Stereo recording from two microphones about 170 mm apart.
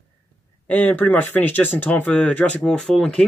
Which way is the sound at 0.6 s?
10° left (ahead or behind).